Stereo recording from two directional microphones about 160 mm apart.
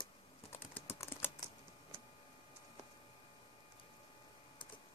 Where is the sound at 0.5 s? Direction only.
15° left (ahead or behind).